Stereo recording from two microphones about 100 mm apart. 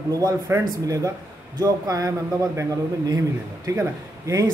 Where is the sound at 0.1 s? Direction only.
35° right (ahead or behind).